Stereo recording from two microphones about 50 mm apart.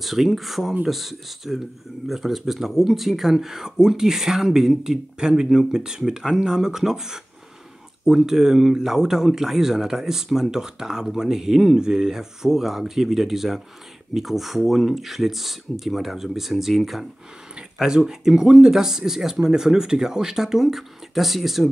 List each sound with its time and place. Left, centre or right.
0.0 s speech: centre
17.6 s speech: centre